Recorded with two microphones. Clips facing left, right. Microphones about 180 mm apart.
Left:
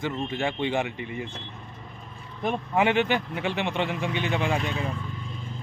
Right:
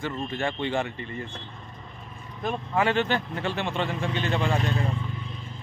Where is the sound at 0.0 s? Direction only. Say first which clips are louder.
Left 1 dB; 15° left (ahead or behind).